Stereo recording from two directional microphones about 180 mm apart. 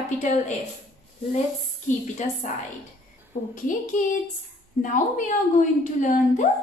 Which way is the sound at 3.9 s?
45° left (ahead or behind).